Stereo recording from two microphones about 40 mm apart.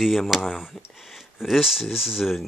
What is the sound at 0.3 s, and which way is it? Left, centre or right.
Speech, centre.